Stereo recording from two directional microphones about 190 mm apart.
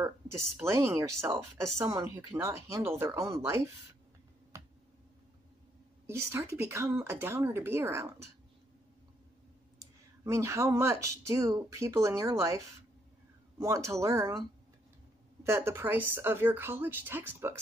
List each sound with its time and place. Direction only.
0.0 s speech: 15° right (ahead or behind)
4.5 s finger snapping: 15° right (ahead or behind)
6.0 s speech: 15° right (ahead or behind)
9.8 s speech: 15° right (ahead or behind)
15.4 s speech: 15° right (ahead or behind)